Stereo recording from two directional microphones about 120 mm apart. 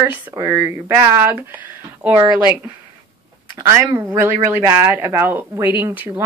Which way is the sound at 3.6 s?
20° right (ahead or behind).